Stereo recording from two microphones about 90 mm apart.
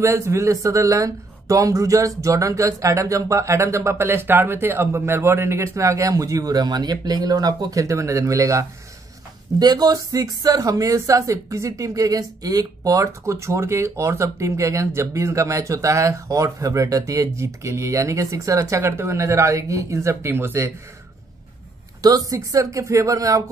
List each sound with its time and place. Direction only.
0.0 s speech: 30° right (ahead or behind)
9.6 s speech: 50° right (ahead or behind); by 20.7 s 25° right (ahead or behind)
22.0 s speech: 40° right (ahead or behind)